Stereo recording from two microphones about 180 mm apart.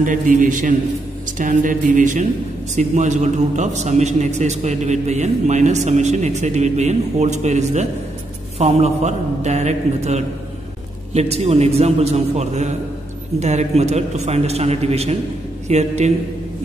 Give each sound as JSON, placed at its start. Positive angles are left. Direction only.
{"t": 0.0, "sound": "a man's voice", "side_deg": -45}